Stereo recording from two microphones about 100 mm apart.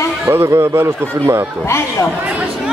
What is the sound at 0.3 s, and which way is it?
Speech, 30° right (ahead or behind).